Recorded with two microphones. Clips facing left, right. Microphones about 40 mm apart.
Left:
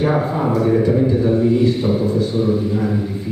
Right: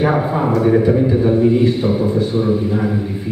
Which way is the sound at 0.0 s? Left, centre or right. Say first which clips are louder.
Right 2 dB; centre.